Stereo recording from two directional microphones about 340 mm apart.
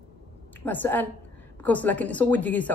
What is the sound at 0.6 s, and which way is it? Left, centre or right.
A woman's voice, centre.